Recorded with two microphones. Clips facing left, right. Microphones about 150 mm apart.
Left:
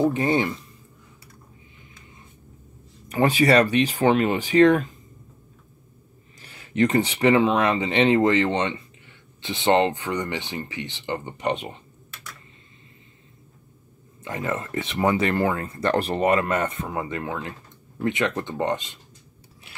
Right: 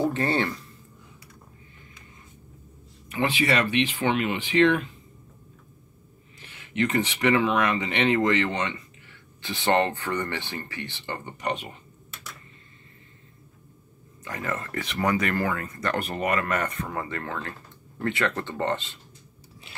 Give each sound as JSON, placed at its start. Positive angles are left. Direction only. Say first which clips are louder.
{"t": 0.0, "sound": "speech", "louder": "left 4 dB", "side_deg": 15}
{"t": 3.1, "sound": "speech", "louder": "left 6 dB", "side_deg": 40}
{"t": 6.4, "sound": "speech", "louder": "left 5 dB", "side_deg": 35}
{"t": 14.2, "sound": "speech", "louder": "left 4 dB", "side_deg": 20}